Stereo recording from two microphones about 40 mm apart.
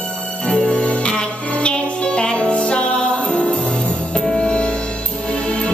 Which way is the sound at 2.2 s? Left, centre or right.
Left.